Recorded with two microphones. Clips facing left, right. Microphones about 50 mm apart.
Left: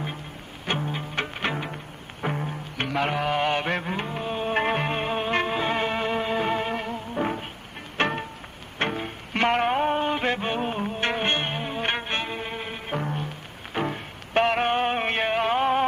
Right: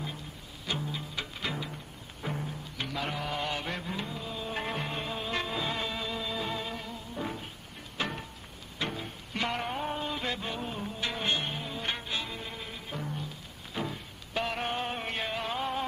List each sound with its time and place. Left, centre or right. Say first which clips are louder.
0.7 s music: left 7 dB; left